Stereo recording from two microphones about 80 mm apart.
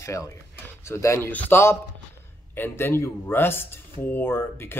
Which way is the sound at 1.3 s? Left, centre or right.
Centre.